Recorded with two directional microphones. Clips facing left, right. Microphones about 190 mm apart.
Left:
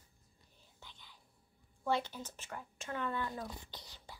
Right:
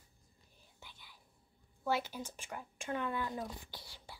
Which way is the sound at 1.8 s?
5° right (ahead or behind).